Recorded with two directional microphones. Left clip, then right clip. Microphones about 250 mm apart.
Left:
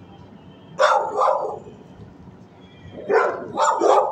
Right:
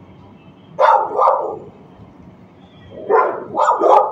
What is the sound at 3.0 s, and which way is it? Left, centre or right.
Dog, left.